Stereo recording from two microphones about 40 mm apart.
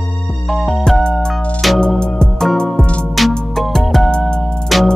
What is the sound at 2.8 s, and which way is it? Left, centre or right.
Music, left.